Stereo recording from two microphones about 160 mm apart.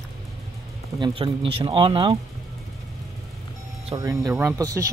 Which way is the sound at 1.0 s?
35° right (ahead or behind).